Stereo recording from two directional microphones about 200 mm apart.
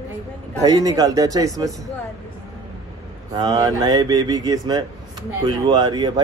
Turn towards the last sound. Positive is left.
turn(degrees=-20)  # may be behind; listen again after turning